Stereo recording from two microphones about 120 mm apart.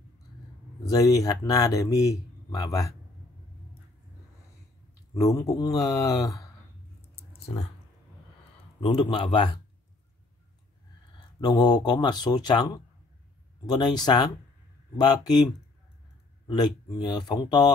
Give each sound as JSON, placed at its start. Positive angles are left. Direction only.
{"t": 0.9, "sound": "speech", "side_deg": 30}
{"t": 5.1, "sound": "speech", "side_deg": 30}
{"t": 8.8, "sound": "a man's voice", "side_deg": 45}
{"t": 11.4, "sound": "speech", "side_deg": 35}